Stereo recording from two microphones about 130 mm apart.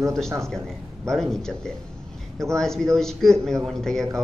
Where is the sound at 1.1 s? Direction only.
5° left (ahead or behind).